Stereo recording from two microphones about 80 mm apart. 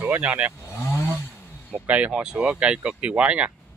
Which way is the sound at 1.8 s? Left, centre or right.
Centre.